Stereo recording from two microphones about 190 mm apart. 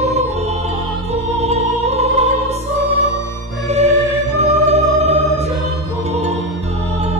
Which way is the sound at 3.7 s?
35° right (ahead or behind).